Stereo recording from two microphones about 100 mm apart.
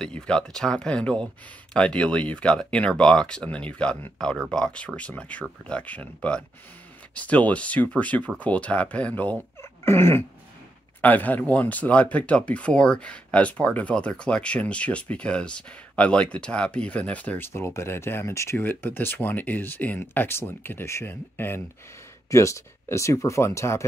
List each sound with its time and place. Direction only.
0.0 s speech: 10° left (ahead or behind)
9.6 s a sound: 25° left (ahead or behind)
11.0 s speech: 15° left (ahead or behind)